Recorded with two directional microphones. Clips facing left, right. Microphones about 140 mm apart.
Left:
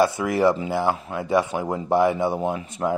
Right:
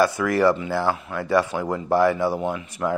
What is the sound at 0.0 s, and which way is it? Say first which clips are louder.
Speech: even; 20° left (ahead or behind).